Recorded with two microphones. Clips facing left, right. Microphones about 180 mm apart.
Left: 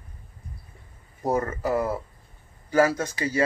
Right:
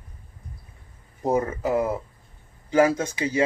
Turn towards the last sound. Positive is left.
turn(degrees=-15)  # may be behind; listen again after turning